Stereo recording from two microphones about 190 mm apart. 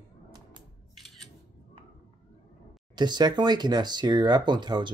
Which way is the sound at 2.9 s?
25° right (ahead or behind).